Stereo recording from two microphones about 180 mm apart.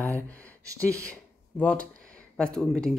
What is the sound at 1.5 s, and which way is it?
Speech, 10° left (ahead or behind).